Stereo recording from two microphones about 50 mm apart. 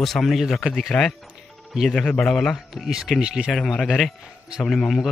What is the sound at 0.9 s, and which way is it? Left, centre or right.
A man's voice, left.